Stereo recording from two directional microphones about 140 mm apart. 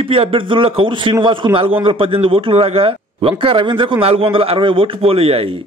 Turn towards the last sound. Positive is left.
turn(degrees=-45)  # may be behind; listen again after turning